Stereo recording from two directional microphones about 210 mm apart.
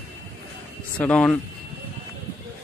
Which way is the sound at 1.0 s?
5° left (ahead or behind).